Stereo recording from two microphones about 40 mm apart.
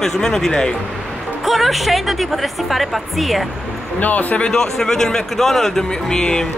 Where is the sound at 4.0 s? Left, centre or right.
Left.